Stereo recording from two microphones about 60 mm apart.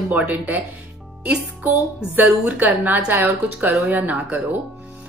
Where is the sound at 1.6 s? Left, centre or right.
Right.